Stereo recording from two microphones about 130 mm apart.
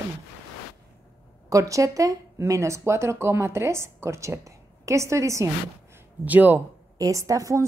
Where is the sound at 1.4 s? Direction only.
25° right (ahead or behind).